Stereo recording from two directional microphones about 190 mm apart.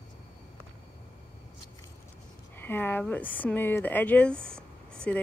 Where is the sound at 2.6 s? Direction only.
10° left (ahead or behind).